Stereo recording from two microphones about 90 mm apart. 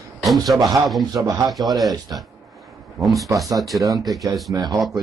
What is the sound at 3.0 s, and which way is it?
Speech, centre (ahead or behind).